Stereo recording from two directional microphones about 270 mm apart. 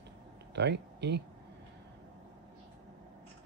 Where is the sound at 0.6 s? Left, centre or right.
Right.